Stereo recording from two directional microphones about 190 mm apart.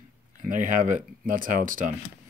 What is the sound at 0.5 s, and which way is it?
Speech, 40° right (ahead or behind).